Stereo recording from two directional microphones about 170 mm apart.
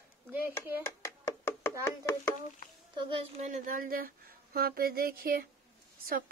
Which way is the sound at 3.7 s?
55° right (ahead or behind).